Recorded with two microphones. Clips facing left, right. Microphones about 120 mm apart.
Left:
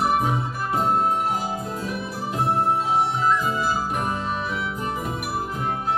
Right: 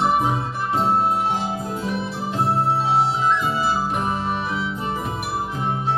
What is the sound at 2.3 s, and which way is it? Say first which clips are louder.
Music: right 1 dB; 30° right (ahead or behind).